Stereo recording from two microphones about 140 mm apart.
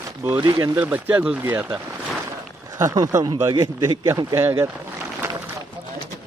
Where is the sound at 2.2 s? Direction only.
25° right (ahead or behind).